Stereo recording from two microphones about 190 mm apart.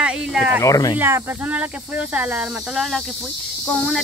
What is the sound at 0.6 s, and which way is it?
Speech, 20° left (ahead or behind).